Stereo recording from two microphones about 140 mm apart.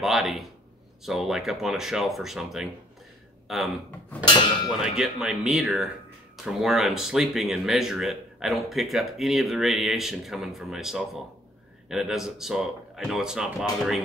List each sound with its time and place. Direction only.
0.0 s speech: centre (ahead or behind)
4.2 s speech: 35° left (ahead or behind)
4.6 s speech: 5° right (ahead or behind)